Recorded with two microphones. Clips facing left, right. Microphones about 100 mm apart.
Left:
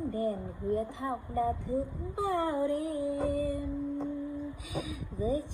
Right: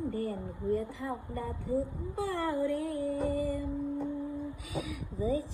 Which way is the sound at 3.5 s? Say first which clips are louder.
Even; 20° left (ahead or behind).